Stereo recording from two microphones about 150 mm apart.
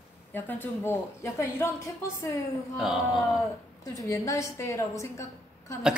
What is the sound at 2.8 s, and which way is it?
Speech, centre (ahead or behind).